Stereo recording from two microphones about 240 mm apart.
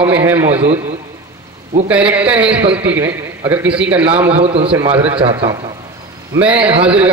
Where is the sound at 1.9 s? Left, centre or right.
Centre.